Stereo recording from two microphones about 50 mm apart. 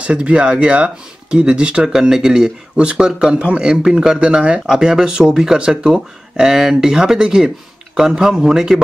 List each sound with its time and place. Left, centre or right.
0.0 s speech: right